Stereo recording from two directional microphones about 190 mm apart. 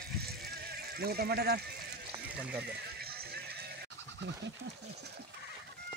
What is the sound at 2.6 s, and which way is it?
Music, 55° right (ahead or behind).